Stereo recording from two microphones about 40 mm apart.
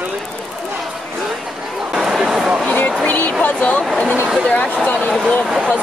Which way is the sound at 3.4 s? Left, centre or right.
Left.